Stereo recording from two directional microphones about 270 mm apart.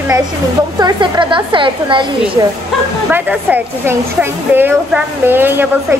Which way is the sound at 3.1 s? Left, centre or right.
Centre.